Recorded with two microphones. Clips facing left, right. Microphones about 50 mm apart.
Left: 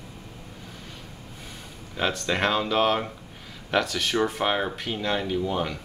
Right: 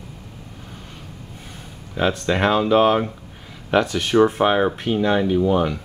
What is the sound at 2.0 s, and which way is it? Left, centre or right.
Speech, centre.